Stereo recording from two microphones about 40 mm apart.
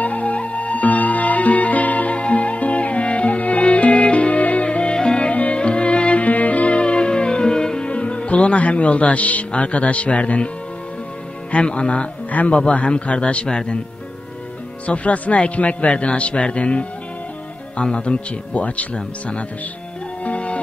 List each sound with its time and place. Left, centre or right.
0.0 s music: left
6.2 s music: left
6.8 s music: left
7.9 s music: left
9.5 s a man's voice: left
11.5 s a man's voice: left
12.3 s a man's voice: left
12.5 s a man's voice: left
13.5 s speech: centre
14.9 s a man's voice: left
20.2 s music: left